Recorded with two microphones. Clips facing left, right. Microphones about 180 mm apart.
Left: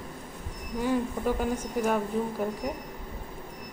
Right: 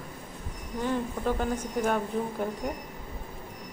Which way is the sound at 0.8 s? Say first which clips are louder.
Left 2 dB; 10° left (ahead or behind).